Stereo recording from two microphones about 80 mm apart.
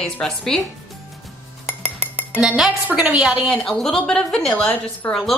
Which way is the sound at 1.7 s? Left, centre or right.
Centre.